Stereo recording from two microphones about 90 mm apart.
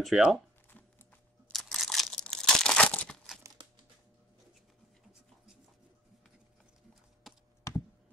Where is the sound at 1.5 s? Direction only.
Centre (ahead or behind).